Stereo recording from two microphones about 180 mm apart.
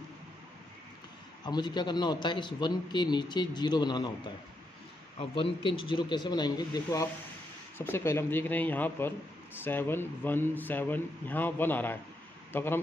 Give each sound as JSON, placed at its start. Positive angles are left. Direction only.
{"t": 1.4, "sound": "a man's voice", "side_deg": 25}
{"t": 5.3, "sound": "a man's voice", "side_deg": 30}